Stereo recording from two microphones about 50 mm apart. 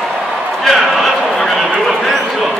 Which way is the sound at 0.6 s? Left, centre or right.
Centre.